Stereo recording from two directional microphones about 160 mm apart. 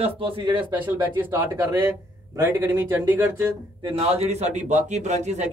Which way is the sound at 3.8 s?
40° right (ahead or behind).